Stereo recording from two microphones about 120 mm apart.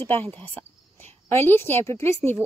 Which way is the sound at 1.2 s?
20° left (ahead or behind).